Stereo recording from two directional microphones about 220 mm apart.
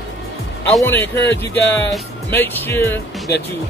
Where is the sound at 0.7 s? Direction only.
10° left (ahead or behind).